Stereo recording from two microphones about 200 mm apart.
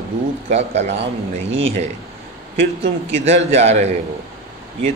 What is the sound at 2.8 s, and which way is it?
Speech, 30° right (ahead or behind).